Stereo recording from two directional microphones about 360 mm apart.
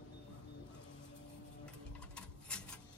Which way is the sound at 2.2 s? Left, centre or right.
Centre.